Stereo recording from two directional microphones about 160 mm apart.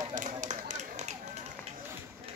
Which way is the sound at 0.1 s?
50° right (ahead or behind).